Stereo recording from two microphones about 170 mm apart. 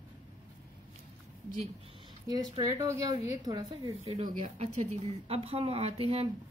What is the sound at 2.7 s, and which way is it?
A woman's voice, 15° right (ahead or behind).